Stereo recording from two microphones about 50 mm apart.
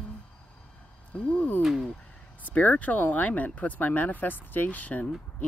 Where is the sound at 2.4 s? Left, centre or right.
Left.